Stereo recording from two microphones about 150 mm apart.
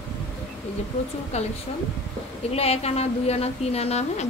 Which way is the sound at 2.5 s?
45° left (ahead or behind).